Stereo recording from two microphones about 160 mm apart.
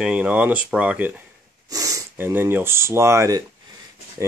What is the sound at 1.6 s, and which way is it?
Speech, 20° right (ahead or behind).